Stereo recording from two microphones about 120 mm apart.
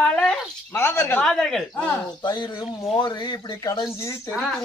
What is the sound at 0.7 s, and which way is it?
Speech, 20° left (ahead or behind).